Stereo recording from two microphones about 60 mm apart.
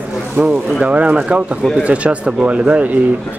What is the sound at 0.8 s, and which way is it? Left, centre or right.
Speech, right.